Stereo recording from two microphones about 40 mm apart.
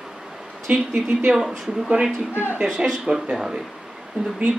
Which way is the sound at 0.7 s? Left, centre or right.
Right.